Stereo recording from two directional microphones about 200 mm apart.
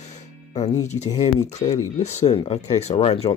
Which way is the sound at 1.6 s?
20° left (ahead or behind).